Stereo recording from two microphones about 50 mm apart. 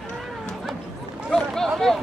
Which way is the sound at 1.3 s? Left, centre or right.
Centre.